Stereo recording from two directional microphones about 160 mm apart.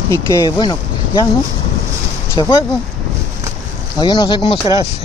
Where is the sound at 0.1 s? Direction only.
20° left (ahead or behind).